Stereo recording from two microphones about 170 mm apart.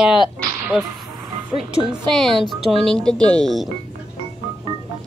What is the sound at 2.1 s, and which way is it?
Speech, centre (ahead or behind).